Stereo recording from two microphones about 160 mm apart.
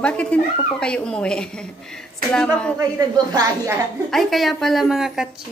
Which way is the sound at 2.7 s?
20° right (ahead or behind).